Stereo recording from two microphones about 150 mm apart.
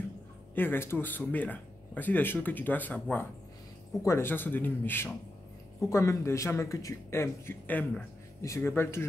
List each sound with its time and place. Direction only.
0.6 s speech: 15° left (ahead or behind)